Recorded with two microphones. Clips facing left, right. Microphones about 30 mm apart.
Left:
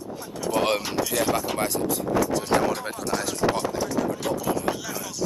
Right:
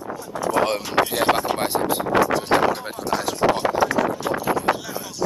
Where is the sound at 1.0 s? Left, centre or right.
Right.